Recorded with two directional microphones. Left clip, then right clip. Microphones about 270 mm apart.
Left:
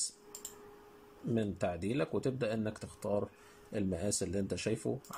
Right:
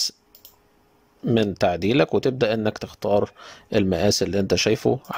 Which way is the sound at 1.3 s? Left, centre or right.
Right.